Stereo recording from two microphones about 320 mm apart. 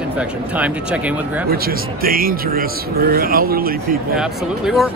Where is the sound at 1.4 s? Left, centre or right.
Right.